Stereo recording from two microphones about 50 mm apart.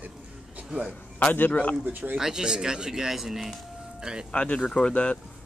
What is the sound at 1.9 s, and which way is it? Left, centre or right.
Speech, right.